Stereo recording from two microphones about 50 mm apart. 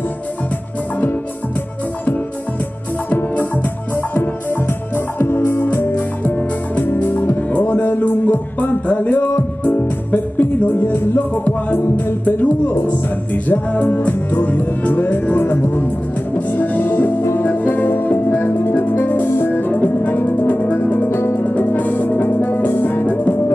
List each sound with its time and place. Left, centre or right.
3.1 s music: left
5.9 s music: left
6.8 s music: left
11.3 s music: left
11.8 s music: left
19.2 s music: left
19.5 s music: left
21.1 s music: left
21.5 s music: left
23.0 s music: left